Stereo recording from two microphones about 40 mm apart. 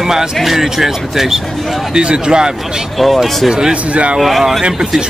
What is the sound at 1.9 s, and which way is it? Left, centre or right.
Speech, right.